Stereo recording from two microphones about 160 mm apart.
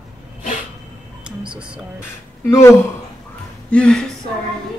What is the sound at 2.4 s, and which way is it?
Speech, 15° left (ahead or behind).